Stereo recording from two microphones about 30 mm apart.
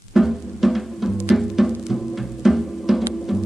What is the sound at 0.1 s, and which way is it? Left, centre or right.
Music, centre.